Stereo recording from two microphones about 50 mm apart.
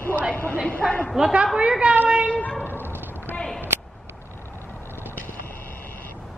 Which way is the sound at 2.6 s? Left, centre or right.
Left.